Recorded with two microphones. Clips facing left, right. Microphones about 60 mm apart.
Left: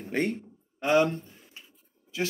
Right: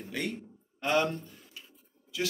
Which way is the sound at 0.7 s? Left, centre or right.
Left.